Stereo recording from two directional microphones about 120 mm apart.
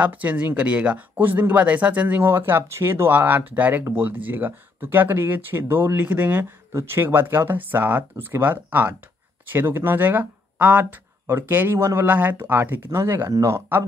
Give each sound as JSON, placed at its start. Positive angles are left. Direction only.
{"t": 0.0, "sound": "speech", "side_deg": -15}